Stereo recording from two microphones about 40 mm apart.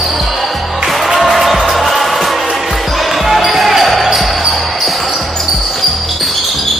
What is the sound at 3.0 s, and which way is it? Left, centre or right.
Basketball bounce, centre.